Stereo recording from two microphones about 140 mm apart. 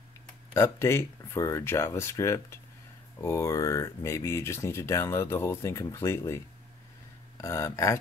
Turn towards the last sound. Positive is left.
turn(degrees=20)  # may be behind; listen again after turning